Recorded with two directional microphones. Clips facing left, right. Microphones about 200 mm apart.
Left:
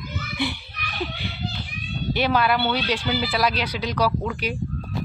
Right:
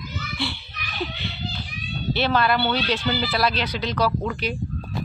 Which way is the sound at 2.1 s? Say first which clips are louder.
Even; 10° left (ahead or behind).